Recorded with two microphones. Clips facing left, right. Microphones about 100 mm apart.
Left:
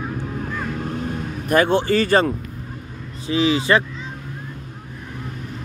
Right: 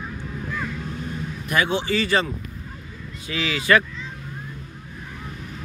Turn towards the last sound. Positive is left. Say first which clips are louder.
# left 3 dB
turn(degrees=25)  # may be behind; listen again after turning